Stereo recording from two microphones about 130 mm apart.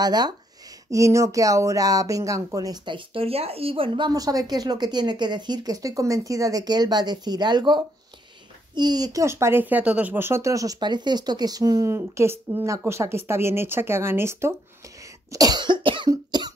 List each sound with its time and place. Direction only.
0.0 s speech: 30° right (ahead or behind)
4.1 s speech: 30° right (ahead or behind)
15.3 s cough: 30° right (ahead or behind)